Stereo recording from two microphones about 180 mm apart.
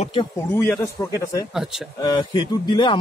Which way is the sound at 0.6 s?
15° left (ahead or behind).